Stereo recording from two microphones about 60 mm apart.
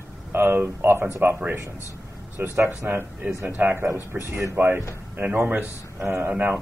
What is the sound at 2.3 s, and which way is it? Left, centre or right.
A man's voice, right.